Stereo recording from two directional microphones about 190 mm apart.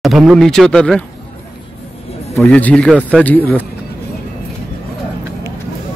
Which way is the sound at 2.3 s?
5° left (ahead or behind).